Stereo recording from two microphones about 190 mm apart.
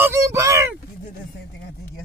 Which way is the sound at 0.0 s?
15° right (ahead or behind).